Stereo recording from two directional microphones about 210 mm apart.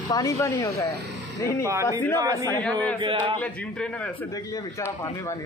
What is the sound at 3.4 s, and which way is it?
Speech, 5° left (ahead or behind).